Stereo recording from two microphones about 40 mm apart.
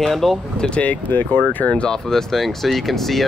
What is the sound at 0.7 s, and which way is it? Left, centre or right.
Speech, left.